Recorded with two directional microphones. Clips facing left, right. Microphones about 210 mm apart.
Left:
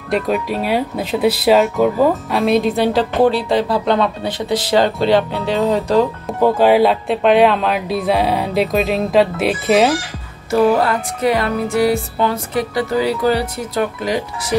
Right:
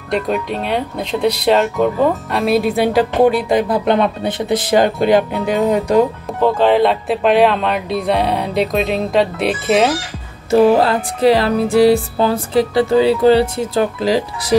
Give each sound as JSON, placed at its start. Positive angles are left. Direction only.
{"t": 0.1, "sound": "speech", "side_deg": 0}
{"t": 6.4, "sound": "speech", "side_deg": 10}
{"t": 10.5, "sound": "music", "side_deg": -25}